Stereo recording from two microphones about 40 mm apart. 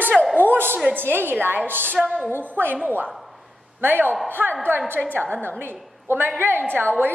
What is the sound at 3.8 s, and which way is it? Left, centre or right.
Speech, right.